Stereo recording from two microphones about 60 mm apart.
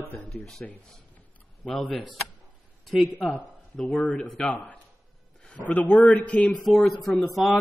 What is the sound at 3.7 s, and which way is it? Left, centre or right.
Speech, left.